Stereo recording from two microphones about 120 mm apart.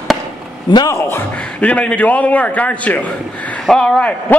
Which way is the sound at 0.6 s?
35° left (ahead or behind).